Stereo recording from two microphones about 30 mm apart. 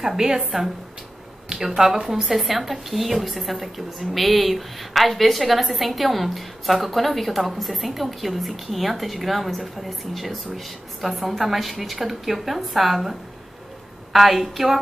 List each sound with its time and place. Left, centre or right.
0.0 s a woman's voice: centre
1.8 s a woman's voice: centre
14.1 s a woman's voice: centre